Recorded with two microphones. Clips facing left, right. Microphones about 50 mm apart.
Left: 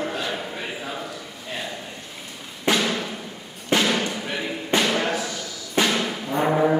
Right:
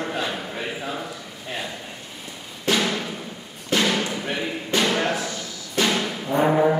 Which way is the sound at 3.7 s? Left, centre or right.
Left.